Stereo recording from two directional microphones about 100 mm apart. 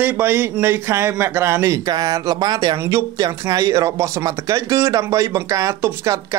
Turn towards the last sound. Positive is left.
turn(degrees=-30)  # may be behind; listen again after turning